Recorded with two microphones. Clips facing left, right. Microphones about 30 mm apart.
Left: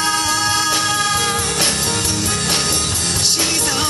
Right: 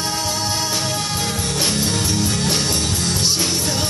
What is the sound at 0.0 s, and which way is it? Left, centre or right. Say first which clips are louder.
Music: left 5 dB; left.